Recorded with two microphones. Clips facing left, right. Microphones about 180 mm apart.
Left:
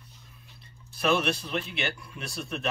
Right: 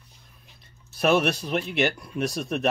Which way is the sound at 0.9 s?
45° right (ahead or behind).